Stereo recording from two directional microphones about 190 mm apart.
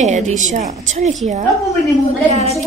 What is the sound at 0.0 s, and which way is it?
A woman's voice, 40° right (ahead or behind).